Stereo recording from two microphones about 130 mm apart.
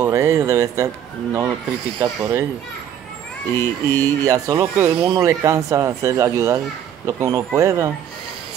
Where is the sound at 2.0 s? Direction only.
20° right (ahead or behind).